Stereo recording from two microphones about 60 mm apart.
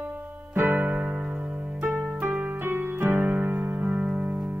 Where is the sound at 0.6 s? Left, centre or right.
Right.